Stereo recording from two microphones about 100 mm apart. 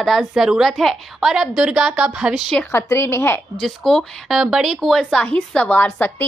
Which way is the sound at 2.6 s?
25° left (ahead or behind).